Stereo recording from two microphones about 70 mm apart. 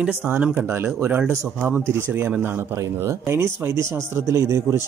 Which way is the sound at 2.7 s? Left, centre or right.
Right.